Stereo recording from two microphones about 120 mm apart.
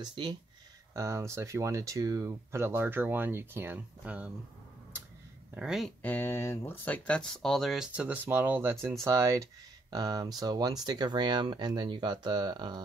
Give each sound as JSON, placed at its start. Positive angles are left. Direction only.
{"t": 0.0, "sound": "speech", "side_deg": -35}
{"t": 0.9, "sound": "speech", "side_deg": -25}
{"t": 5.5, "sound": "speech", "side_deg": -5}
{"t": 6.0, "sound": "speech", "side_deg": 20}